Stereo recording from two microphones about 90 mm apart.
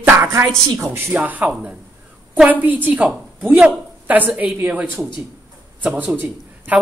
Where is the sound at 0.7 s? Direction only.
25° right (ahead or behind).